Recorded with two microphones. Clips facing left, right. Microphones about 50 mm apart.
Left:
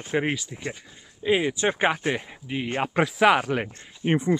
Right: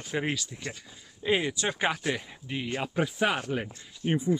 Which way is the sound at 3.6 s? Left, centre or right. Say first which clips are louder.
Left 4 dB; left.